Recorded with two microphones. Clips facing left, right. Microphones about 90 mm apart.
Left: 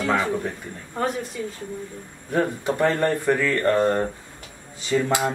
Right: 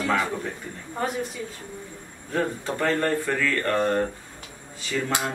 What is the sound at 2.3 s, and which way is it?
Speech, 20° left (ahead or behind).